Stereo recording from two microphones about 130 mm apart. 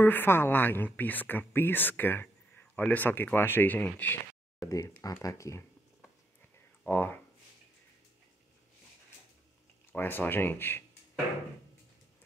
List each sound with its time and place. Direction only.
0.0 s speech: 15° left (ahead or behind)
4.6 s speech: 25° left (ahead or behind)
6.9 s speech: 15° left (ahead or behind)
9.9 s speech: 15° left (ahead or behind)